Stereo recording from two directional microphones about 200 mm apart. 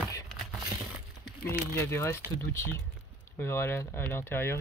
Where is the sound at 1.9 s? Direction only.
15° left (ahead or behind).